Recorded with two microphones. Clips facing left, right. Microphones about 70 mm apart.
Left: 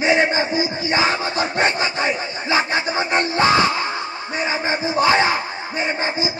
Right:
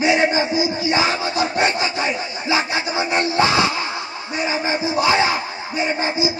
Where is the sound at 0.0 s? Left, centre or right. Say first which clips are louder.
Even; left.